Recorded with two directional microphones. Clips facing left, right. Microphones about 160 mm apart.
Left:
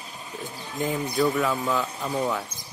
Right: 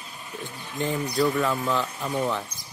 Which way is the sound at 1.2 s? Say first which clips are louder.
Even; centre (ahead or behind).